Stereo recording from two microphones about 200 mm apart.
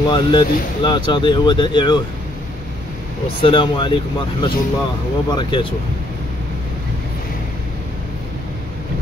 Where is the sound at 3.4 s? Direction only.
25° left (ahead or behind).